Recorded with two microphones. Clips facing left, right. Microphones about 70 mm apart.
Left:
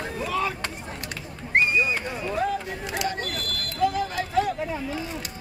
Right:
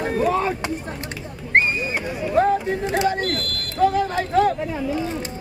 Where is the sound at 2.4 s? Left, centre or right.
Right.